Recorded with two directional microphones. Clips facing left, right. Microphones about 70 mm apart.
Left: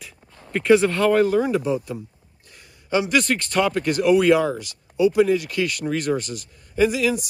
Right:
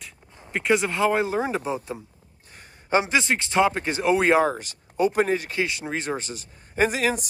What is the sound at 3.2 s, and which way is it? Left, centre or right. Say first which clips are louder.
Speech: even; centre.